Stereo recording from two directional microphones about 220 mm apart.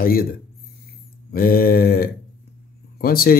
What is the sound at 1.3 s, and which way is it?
Speech, 40° left (ahead or behind).